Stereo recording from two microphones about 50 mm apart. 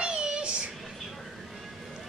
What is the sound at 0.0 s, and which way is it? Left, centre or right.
Child singing, centre.